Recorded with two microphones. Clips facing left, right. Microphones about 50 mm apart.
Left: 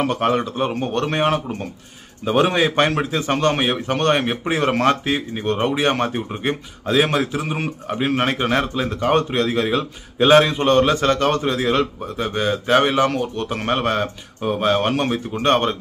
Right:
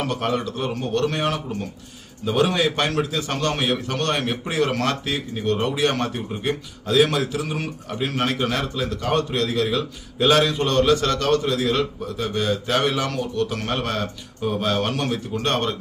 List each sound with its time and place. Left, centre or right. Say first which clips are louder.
0.0 s a man's voice: left 5 dB; left